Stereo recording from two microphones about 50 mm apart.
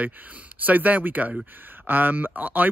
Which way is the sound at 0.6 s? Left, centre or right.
Right.